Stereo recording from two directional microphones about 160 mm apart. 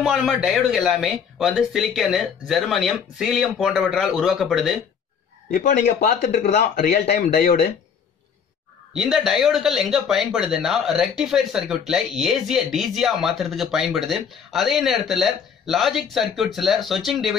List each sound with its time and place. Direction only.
0.0 s speech: centre (ahead or behind)
6.7 s speech: 65° left (ahead or behind)
7.1 s speech: 50° left (ahead or behind)
8.9 s speech: centre (ahead or behind)